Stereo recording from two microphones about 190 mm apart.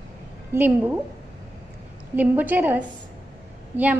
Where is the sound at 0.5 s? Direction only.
10° right (ahead or behind).